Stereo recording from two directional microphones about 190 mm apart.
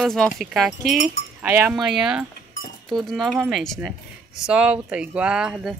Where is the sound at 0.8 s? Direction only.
55° right (ahead or behind).